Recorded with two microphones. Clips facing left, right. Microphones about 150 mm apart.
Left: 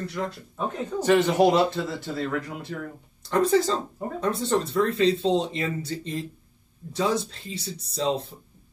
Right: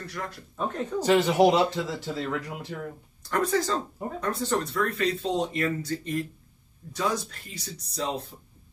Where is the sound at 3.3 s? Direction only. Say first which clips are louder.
Left 4 dB; 25° left (ahead or behind).